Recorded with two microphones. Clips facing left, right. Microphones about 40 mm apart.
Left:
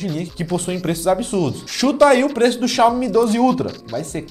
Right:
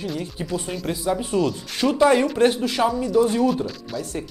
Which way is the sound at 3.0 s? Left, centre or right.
Left.